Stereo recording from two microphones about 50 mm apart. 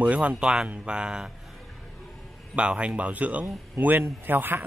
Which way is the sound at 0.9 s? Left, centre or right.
Centre.